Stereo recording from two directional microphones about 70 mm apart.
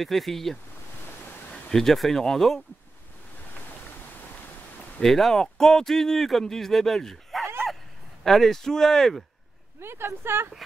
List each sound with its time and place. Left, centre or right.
0.0 s speech: centre
5.0 s speech: centre
9.8 s speech: right